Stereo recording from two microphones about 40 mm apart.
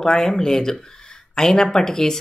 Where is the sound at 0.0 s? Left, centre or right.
Centre.